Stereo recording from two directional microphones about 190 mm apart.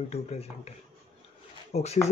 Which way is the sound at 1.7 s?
35° left (ahead or behind).